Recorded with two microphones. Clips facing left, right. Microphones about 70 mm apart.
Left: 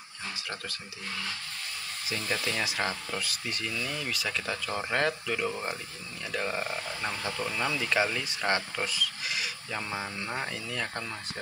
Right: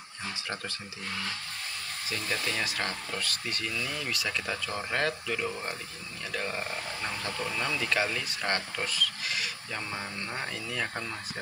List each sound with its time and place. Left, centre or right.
2.0 s speech: centre